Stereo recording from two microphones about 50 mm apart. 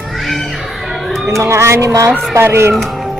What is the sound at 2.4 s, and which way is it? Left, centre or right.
Speech, right.